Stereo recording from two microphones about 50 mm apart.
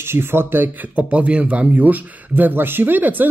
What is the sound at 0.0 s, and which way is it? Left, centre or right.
Speech, right.